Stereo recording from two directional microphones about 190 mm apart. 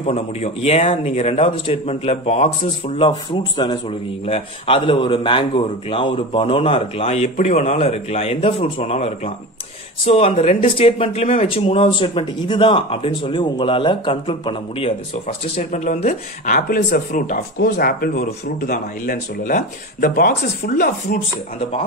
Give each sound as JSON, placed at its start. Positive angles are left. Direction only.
{"t": 0.0, "sound": "speech", "side_deg": 35}
{"t": 3.0, "sound": "speech", "side_deg": 25}